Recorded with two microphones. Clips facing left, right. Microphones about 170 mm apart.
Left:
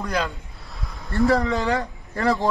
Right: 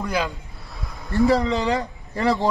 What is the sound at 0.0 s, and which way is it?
A man's voice, 10° right (ahead or behind).